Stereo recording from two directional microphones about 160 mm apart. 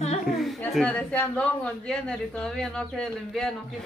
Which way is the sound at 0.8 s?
10° left (ahead or behind).